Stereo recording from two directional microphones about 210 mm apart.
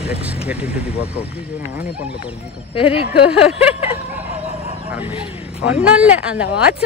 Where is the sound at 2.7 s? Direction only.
25° left (ahead or behind).